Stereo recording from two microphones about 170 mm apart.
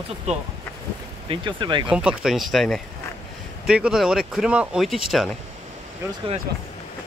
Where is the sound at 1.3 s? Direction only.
30° right (ahead or behind).